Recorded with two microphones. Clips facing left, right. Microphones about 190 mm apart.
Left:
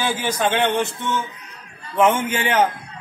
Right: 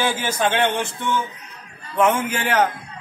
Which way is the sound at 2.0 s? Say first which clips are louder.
Left 1 dB; 25° left (ahead or behind).